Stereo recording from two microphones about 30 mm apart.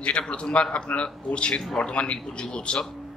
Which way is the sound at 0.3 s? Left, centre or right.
Left.